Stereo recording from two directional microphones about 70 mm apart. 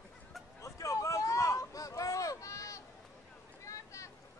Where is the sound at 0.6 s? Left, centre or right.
Left.